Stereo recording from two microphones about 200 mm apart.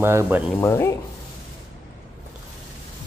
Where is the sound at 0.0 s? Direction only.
10° right (ahead or behind).